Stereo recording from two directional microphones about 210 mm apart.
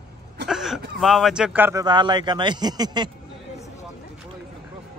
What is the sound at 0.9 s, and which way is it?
A man's voice, centre (ahead or behind).